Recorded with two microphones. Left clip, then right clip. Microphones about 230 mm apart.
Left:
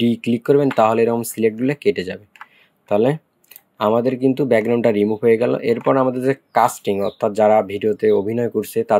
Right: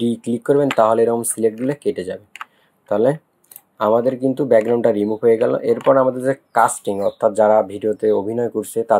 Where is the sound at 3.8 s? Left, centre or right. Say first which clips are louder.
Right 1 dB; left.